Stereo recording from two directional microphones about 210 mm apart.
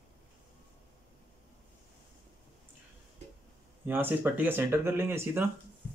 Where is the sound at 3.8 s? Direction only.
10° right (ahead or behind).